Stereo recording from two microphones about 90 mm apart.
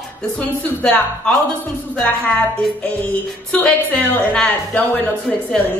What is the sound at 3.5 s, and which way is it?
A woman's voice, 15° left (ahead or behind).